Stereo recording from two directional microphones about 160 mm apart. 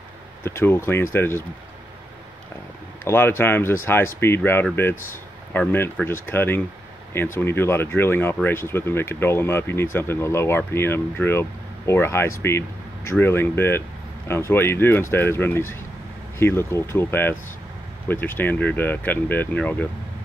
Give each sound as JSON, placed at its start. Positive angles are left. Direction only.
{"t": 0.4, "sound": "speech", "side_deg": 15}
{"t": 3.0, "sound": "speech", "side_deg": 15}